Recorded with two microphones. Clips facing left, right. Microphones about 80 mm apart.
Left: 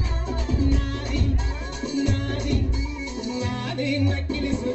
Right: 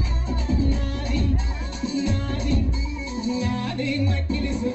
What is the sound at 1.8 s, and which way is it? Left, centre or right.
Music, left.